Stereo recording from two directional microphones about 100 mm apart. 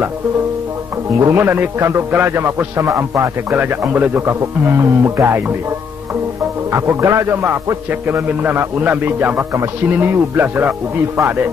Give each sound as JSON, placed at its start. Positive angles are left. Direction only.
{"t": 1.2, "sound": "a man's voice", "side_deg": -25}
{"t": 6.7, "sound": "a man's voice", "side_deg": -30}